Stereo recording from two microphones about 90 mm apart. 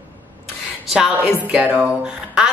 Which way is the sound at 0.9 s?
5° right (ahead or behind).